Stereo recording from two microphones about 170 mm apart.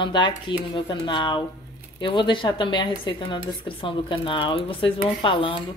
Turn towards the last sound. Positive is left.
turn(degrees=30)  # may be behind; listen again after turning